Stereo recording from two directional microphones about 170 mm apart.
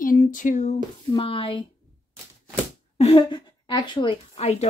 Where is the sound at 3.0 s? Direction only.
30° left (ahead or behind).